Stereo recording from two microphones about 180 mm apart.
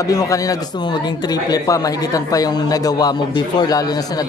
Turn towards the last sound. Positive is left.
turn(degrees=20)  # may be behind; listen again after turning